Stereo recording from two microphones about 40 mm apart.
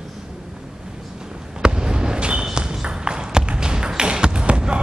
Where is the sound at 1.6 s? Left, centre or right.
Right.